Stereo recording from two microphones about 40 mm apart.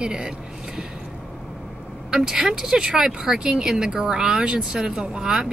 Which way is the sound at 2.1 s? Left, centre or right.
Centre.